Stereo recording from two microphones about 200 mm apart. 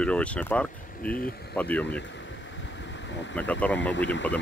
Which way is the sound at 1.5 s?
5° left (ahead or behind).